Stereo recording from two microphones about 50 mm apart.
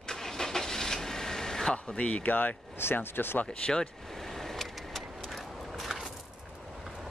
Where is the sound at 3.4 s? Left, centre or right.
Centre.